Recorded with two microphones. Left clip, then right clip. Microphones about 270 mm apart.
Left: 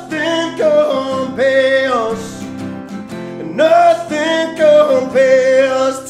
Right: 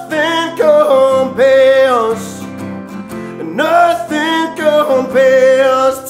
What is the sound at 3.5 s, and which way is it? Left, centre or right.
Music, centre.